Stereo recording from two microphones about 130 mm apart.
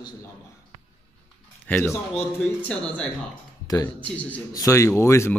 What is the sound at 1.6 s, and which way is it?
Speech, 10° left (ahead or behind).